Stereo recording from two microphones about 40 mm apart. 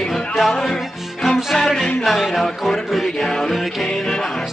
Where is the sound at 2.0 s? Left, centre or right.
Centre.